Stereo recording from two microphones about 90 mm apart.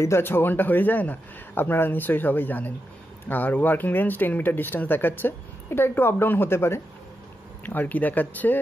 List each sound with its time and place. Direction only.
0.0 s speech: 30° left (ahead or behind)